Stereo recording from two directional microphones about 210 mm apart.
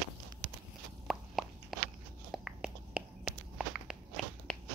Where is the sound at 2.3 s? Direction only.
5° right (ahead or behind).